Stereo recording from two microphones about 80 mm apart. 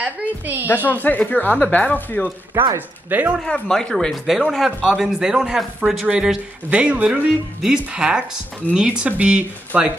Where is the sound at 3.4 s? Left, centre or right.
Centre.